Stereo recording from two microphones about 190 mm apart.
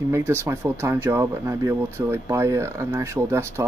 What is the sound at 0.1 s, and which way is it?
Speech, 15° right (ahead or behind).